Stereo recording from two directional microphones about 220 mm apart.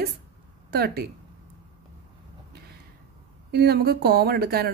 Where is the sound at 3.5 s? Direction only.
45° right (ahead or behind).